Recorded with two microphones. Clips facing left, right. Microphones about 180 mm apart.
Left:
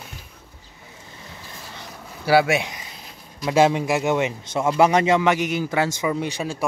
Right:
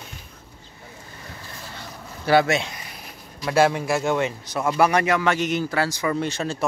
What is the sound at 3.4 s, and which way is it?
A man's voice, 20° left (ahead or behind).